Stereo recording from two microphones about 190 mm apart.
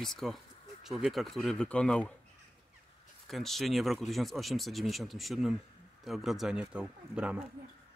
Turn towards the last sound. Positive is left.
turn(degrees=-5)  # may be behind; listen again after turning